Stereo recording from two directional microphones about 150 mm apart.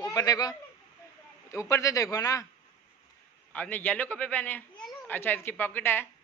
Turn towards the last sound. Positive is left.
turn(degrees=15)  # may be behind; listen again after turning